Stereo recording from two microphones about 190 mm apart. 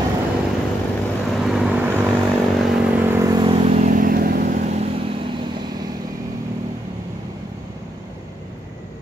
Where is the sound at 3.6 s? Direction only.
40° right (ahead or behind); by 5.9 s 20° right (ahead or behind).